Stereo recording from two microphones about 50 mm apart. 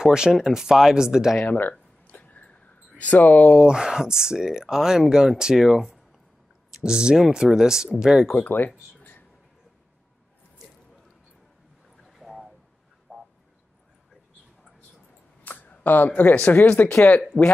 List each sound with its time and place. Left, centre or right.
0.0 s speech: centre
1.4 s a sound: left
3.0 s speech: left
3.5 s speech: centre
8.5 s speech: left
12.0 s a sound: centre
13.1 s frog: right
15.4 s speech: left
17.3 s speech: left